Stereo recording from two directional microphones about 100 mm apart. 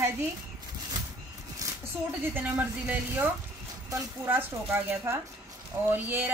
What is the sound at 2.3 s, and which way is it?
Speech, 20° right (ahead or behind).